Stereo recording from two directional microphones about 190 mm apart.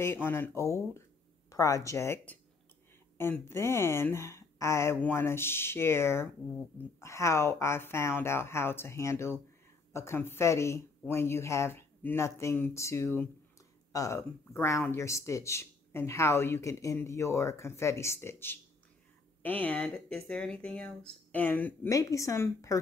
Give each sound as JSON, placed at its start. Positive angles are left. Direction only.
{"t": 0.0, "sound": "speech", "side_deg": 10}